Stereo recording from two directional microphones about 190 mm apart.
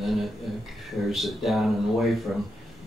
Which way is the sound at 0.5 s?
Centre (ahead or behind).